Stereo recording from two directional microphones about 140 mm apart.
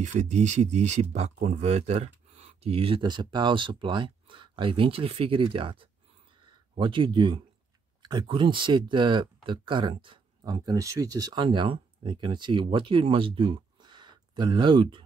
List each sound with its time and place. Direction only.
0.0 s speech: 60° right (ahead or behind); by 15.0 s 35° right (ahead or behind)